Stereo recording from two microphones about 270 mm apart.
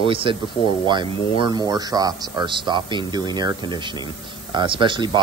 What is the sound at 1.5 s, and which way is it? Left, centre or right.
Speech, centre.